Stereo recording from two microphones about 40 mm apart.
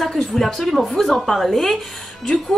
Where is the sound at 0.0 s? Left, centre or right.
Centre.